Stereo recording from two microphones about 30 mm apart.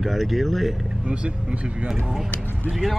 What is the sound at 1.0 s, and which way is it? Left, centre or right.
Speech, right.